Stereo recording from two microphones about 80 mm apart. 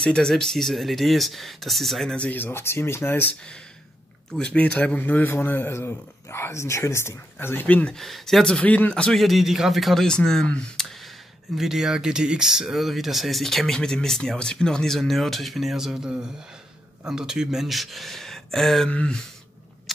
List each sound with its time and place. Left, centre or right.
0.0 s speech: centre
2.1 s speech: centre
4.3 s speech: centre
7.9 s speech: centre
8.5 s speech: centre
11.5 s speech: centre